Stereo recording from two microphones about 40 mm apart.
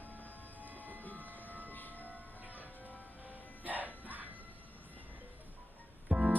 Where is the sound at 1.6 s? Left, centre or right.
Left.